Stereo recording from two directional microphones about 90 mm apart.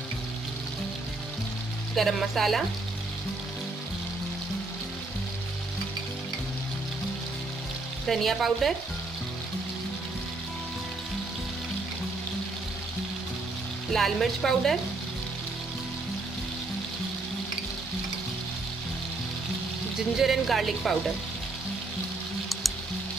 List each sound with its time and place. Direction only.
2.0 s a woman's voice: centre (ahead or behind)
8.1 s a woman's voice: centre (ahead or behind)
13.9 s a woman's voice: centre (ahead or behind)
20.2 s a woman's voice: centre (ahead or behind)